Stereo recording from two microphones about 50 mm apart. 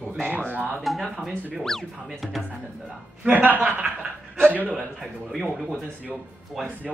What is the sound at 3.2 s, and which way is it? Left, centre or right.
A man's voice, right.